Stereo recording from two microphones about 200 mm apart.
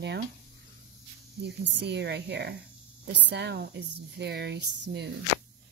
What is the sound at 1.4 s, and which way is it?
Speech, 60° right (ahead or behind).